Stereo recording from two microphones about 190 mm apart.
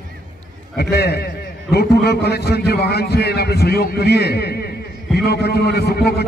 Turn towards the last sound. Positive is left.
turn(degrees=55)  # may be behind; listen again after turning